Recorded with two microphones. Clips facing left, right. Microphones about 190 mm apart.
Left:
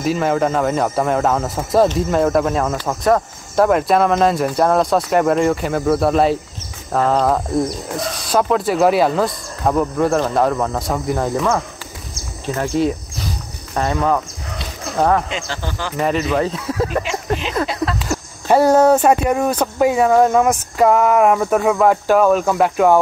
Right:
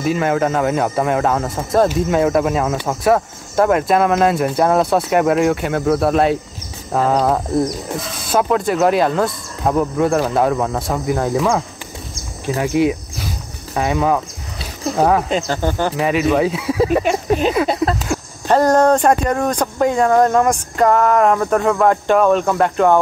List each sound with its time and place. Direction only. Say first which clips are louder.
0.0 s speech: even; centre (ahead or behind)
13.7 s a sound: right 1 dB; 10° right (ahead or behind)
15.2 s speech: right 7 dB; 45° right (ahead or behind)
16.0 s speech: right 1 dB; 5° right (ahead or behind)
17.6 s a sound: right 4 dB; 40° right (ahead or behind)
18.0 s speech: even; 5° left (ahead or behind)